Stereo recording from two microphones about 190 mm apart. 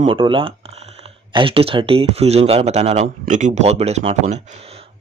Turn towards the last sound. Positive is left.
turn(degrees=-35)  # may be behind; listen again after turning